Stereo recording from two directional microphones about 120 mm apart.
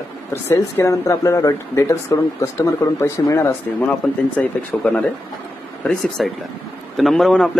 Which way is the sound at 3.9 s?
10° left (ahead or behind).